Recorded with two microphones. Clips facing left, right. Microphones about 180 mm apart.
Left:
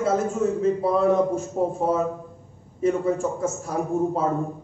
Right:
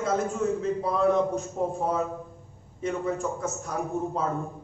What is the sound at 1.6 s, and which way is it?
Speech, 35° left (ahead or behind).